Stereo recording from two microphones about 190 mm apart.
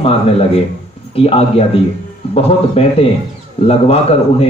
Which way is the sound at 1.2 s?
30° left (ahead or behind).